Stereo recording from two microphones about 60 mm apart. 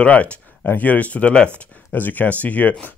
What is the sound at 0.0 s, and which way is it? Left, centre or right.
Speech, left.